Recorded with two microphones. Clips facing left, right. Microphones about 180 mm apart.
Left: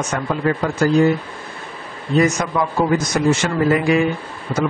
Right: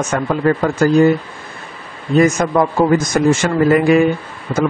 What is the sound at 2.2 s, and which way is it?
A man's voice, 50° right (ahead or behind).